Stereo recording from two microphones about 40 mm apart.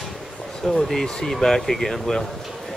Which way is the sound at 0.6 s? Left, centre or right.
Centre.